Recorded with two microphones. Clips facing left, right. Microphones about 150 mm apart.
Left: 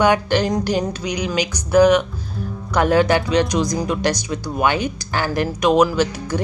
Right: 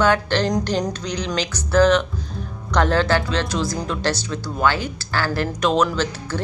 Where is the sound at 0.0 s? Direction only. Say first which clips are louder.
Left 2 dB; 10° left (ahead or behind).